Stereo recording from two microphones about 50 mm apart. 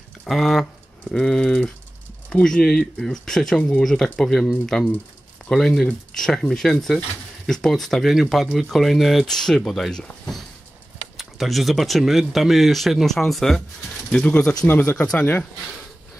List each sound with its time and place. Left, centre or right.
0.3 s speech: centre
1.0 s speech: centre
3.5 s speech: left
3.8 s speech: centre
9.2 s speech: centre
11.1 s speech: centre
14.1 s speech: centre; by 15.4 s left